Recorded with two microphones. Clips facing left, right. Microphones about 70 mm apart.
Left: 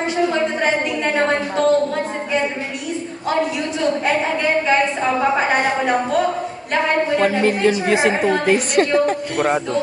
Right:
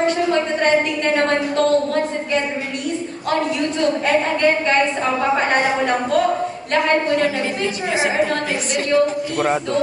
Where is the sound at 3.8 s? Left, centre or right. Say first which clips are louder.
Even; centre.